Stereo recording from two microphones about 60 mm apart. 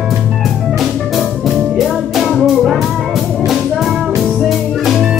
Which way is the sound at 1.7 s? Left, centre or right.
Centre.